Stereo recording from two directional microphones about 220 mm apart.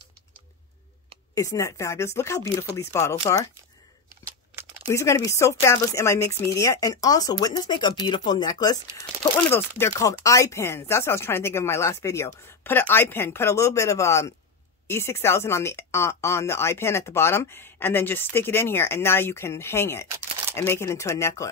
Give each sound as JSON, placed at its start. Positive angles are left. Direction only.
{"t": 1.3, "sound": "speech", "side_deg": 15}
{"t": 4.8, "sound": "speech", "side_deg": 15}